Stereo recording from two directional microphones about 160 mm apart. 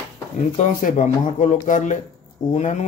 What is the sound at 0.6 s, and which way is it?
Speech, 55° left (ahead or behind).